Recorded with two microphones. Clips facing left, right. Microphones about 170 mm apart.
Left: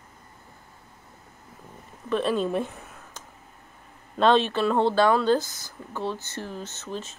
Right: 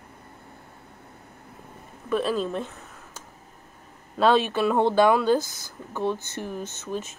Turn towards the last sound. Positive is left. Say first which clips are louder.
# right 3 dB
turn(degrees=-10)  # may be behind; listen again after turning